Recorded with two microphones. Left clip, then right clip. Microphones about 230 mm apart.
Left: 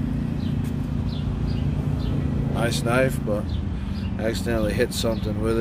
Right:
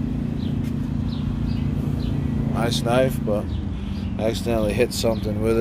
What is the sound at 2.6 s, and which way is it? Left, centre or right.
Speech, centre.